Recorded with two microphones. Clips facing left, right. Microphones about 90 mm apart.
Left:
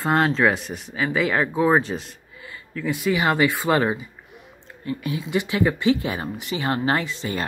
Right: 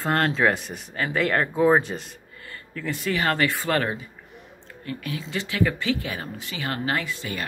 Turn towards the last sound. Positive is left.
turn(degrees=25)  # may be behind; listen again after turning